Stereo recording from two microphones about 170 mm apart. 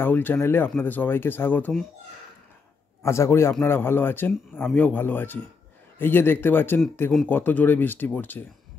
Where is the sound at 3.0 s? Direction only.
15° left (ahead or behind).